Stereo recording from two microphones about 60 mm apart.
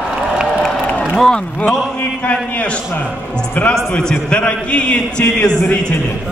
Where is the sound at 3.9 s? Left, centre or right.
Centre.